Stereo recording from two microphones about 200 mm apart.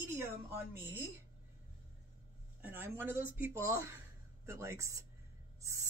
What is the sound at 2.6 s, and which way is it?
Speech, 10° right (ahead or behind).